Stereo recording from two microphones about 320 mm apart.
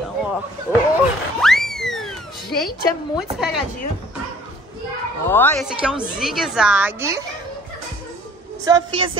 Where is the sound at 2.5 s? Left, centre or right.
Left.